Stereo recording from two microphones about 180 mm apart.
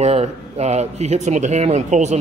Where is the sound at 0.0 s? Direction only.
35° right (ahead or behind).